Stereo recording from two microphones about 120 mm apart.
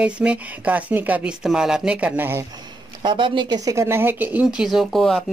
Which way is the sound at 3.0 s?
40° right (ahead or behind).